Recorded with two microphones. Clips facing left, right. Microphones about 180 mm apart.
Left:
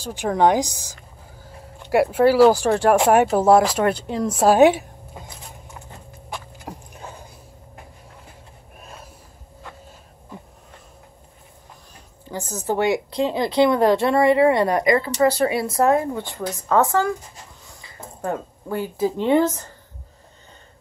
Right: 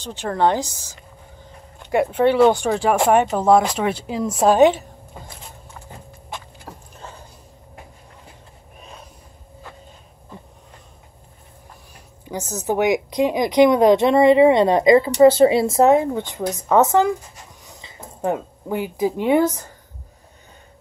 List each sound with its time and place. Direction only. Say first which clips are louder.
0.0 s speech: left 1 dB; 15° left (ahead or behind)
6.6 s a sound: left 2 dB; 10° left (ahead or behind)
12.5 s speech: right 2 dB; 15° right (ahead or behind)